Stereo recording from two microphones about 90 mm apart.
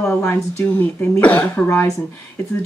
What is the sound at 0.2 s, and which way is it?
Speech, 35° left (ahead or behind).